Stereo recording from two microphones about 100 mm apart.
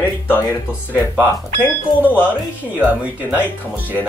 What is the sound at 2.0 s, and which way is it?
Speech, 20° left (ahead or behind).